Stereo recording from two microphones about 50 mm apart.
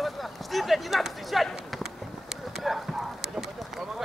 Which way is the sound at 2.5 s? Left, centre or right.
Centre.